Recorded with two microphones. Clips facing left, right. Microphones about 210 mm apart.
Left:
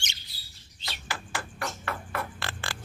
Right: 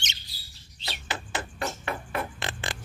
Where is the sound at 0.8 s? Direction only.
20° right (ahead or behind).